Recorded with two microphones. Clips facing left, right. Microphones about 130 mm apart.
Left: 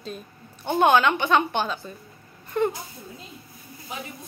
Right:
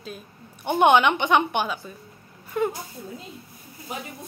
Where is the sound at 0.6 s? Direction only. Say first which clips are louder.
Right 1 dB; 20° right (ahead or behind).